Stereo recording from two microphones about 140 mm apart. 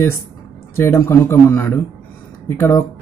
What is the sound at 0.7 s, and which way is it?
Speech, 15° left (ahead or behind).